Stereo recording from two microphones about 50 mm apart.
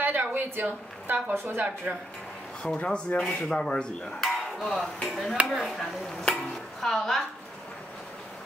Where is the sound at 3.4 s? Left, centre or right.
Centre.